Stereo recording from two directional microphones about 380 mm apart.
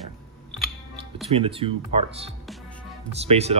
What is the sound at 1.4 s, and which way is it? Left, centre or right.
Speech, centre.